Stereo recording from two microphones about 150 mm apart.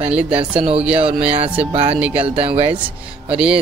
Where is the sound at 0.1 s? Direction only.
5° right (ahead or behind).